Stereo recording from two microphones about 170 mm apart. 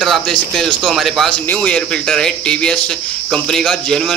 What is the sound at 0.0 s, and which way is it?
Speech, centre (ahead or behind).